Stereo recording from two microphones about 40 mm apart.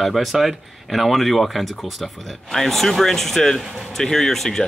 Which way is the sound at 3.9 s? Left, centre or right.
Centre.